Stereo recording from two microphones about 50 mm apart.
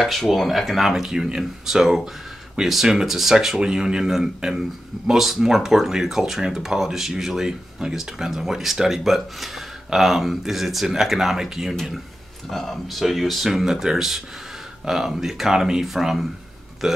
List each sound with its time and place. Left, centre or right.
0.0 s speech: centre
12.4 s speech: centre